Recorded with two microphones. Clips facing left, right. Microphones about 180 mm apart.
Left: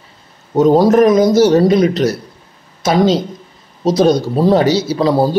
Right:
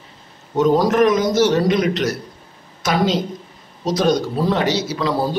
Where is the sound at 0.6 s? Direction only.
35° left (ahead or behind).